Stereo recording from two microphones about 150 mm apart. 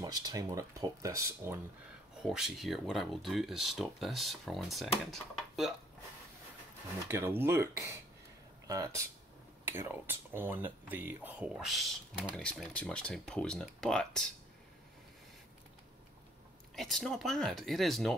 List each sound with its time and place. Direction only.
0.0 s speech: 25° right (ahead or behind)
2.2 s speech: centre (ahead or behind)
7.1 s speech: 15° right (ahead or behind); by 14.2 s 5° left (ahead or behind)
16.7 s speech: centre (ahead or behind)